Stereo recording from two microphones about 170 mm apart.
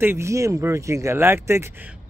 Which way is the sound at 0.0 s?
15° right (ahead or behind).